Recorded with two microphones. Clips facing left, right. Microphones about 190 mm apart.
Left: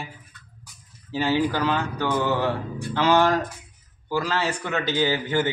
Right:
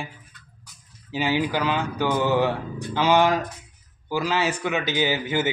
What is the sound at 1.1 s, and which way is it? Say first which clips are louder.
Speech: left 1 dB; 15° right (ahead or behind).